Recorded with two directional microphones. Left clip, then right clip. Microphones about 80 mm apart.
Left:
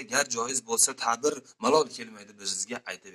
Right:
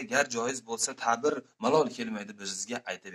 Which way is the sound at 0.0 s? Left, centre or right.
Right.